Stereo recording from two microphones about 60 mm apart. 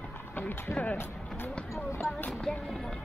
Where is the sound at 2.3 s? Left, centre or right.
Centre.